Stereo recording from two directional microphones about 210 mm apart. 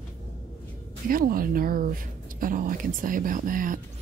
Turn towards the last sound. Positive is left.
turn(degrees=-40)  # may be behind; listen again after turning